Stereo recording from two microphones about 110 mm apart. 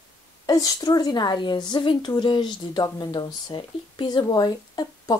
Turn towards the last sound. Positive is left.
turn(degrees=35)  # may be behind; listen again after turning